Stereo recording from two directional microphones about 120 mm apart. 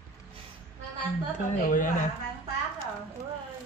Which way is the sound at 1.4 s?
90° left.